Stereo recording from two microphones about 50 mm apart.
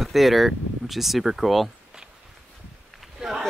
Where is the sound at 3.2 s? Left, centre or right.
Centre.